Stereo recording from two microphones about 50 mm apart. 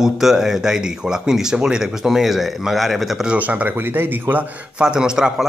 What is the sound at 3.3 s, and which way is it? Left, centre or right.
Speech, right.